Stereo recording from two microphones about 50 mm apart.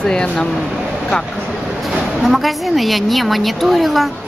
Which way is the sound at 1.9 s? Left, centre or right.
Centre.